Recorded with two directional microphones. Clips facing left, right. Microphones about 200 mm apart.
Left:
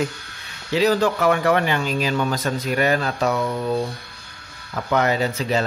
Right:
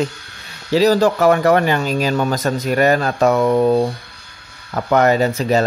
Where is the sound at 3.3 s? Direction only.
80° right.